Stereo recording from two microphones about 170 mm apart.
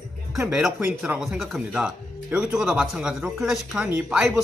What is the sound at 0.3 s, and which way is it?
A man's voice, 5° right (ahead or behind).